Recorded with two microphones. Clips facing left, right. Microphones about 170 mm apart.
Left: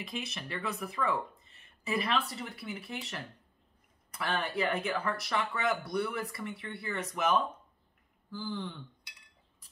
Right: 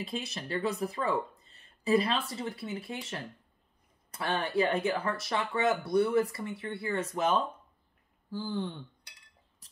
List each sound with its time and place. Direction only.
0.0 s speech: 30° right (ahead or behind)
4.1 s speech: 30° right (ahead or behind)